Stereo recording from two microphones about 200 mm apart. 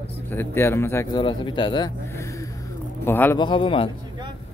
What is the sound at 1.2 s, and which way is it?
Speech, 25° left (ahead or behind).